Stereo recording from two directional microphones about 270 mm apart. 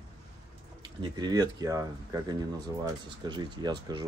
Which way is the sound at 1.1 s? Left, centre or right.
Centre.